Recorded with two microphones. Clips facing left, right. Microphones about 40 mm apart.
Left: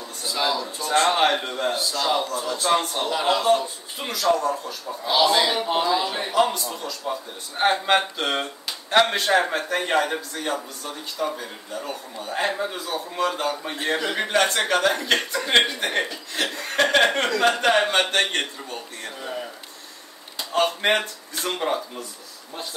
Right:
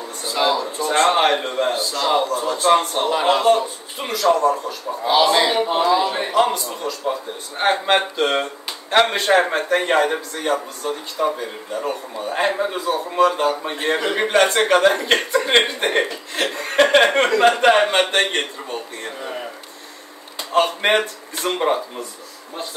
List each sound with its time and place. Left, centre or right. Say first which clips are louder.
0.2 s a man's voice: right 5 dB; right
4.6 s a man's voice: right 6 dB; right
6.7 s a man's voice: right 5 dB; right
7.6 s speech: right 2 dB; centre
8.0 s a man's voice: right 5 dB; right
10.3 s a man's voice: right 6 dB; right
16.8 s a man's voice: right 4 dB; right
17.1 s a man's voice: right 6 dB; right
20.3 s a man's voice: right 4 dB; right